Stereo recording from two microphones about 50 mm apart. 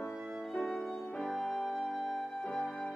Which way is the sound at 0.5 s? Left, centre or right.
Centre.